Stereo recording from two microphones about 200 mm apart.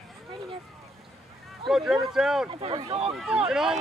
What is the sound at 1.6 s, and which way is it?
Speech, centre (ahead or behind).